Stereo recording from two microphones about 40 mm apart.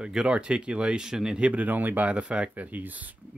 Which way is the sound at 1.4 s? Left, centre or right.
Right.